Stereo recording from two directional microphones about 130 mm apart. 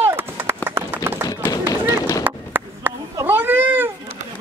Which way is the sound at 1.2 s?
30° left (ahead or behind).